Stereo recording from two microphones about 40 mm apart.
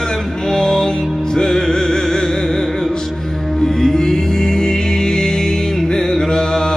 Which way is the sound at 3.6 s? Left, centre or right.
Centre.